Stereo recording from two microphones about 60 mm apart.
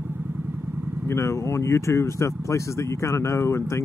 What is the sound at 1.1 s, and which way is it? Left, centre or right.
Speech, left.